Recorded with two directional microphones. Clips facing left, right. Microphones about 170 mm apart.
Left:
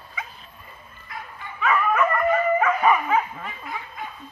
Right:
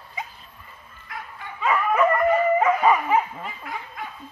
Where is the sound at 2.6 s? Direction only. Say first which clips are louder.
Right 1 dB; 25° right (ahead or behind).